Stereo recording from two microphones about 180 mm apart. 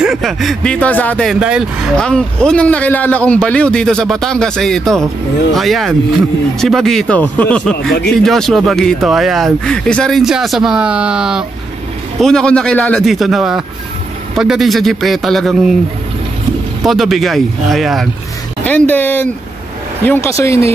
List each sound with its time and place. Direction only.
0.0 s speech: centre (ahead or behind)
16.8 s speech: centre (ahead or behind); by 20.6 s 15° left (ahead or behind)